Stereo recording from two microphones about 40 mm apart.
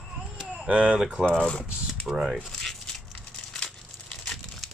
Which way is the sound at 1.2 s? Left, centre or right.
Left.